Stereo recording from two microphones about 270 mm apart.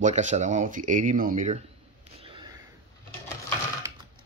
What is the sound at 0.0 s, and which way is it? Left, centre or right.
Speech, right.